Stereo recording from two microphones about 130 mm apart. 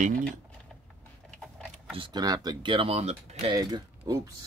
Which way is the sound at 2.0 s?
35° right (ahead or behind).